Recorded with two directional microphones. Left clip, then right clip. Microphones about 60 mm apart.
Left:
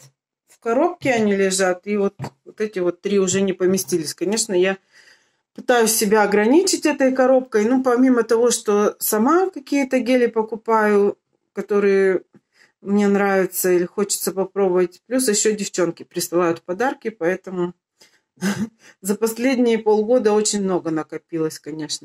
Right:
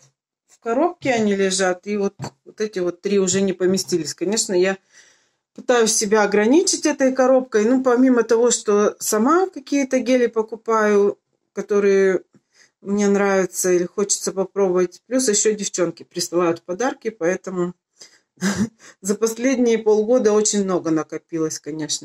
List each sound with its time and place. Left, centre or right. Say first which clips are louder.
0.7 s speech: left 1 dB; left
1.6 s speech: left 1 dB; centre
4.5 s speech: even; centre
5.6 s speech: even; left
6.0 s speech: left 1 dB; centre
17.2 s speech: right 1 dB; centre
17.9 s a sound: right 4 dB; centre
18.8 s speech: left 1 dB; centre